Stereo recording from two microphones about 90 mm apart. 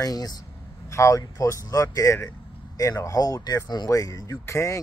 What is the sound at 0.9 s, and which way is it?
Speech, 35° left (ahead or behind).